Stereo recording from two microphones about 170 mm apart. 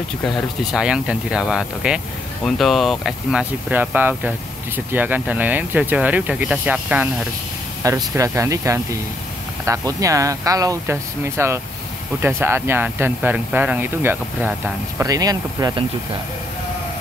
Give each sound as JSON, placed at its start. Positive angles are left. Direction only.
{"t": 0.7, "sound": "speech", "side_deg": -5}